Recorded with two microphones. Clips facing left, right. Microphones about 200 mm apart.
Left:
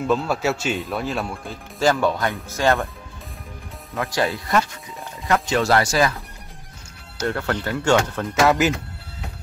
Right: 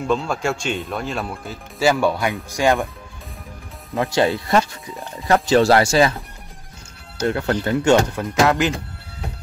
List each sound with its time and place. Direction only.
0.0 s speech: 5° left (ahead or behind); by 2.9 s 15° right (ahead or behind)
3.9 s speech: 30° right (ahead or behind)
7.2 s speech: 20° right (ahead or behind)
8.5 s speech: 5° left (ahead or behind)